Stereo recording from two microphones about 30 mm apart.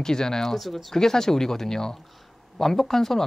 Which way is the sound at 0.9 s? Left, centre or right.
Centre.